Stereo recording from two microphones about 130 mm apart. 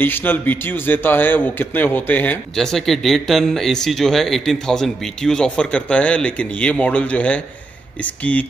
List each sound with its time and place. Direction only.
0.0 s a man's voice: 15° left (ahead or behind)
2.5 s a man's voice: 5° left (ahead or behind)